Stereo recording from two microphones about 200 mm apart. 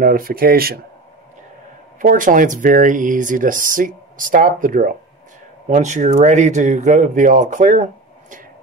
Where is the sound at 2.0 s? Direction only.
40° right (ahead or behind).